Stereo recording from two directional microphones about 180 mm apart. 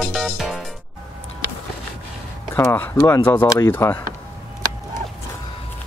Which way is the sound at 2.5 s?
10° left (ahead or behind).